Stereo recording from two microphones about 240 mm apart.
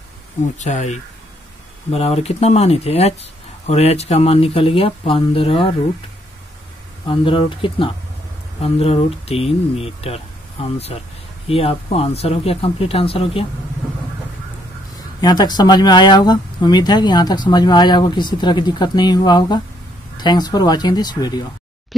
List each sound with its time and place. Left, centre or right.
0.6 s speech: left
7.1 s speech: left
15.1 s speech: centre